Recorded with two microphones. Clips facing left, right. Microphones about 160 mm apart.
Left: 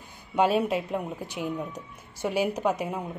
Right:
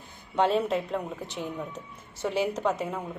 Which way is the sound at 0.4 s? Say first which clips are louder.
Left 1 dB; 10° left (ahead or behind).